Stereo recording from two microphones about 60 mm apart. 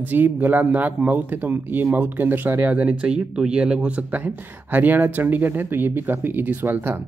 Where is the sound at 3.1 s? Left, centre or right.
Centre.